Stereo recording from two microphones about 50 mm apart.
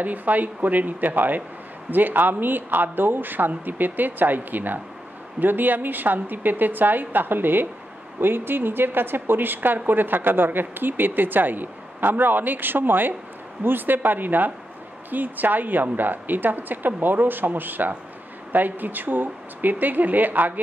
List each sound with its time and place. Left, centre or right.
0.0 s a woman's voice: right